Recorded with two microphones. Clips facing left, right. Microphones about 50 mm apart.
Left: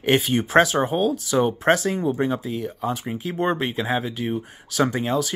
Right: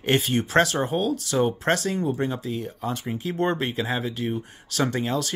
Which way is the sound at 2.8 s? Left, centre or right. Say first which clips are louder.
Left 1 dB; centre.